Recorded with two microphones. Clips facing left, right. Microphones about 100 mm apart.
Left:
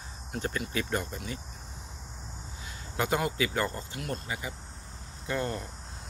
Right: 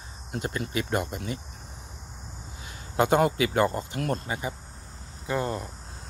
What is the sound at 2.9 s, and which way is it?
Speech, 25° right (ahead or behind).